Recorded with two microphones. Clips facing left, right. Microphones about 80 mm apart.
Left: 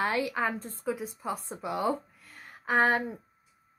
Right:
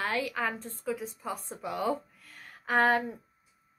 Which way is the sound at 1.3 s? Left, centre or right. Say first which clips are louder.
Left 2 dB; centre.